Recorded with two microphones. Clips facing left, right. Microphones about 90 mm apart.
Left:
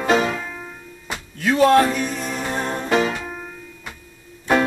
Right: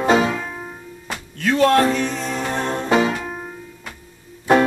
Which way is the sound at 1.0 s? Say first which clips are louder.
Even; 10° left (ahead or behind).